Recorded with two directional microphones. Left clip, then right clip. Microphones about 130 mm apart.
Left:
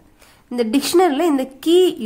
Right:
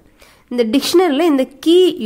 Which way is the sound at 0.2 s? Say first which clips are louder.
Right 4 dB; 25° right (ahead or behind).